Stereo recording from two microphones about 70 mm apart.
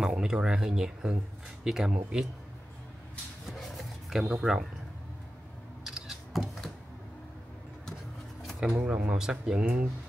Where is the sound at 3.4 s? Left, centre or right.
Centre.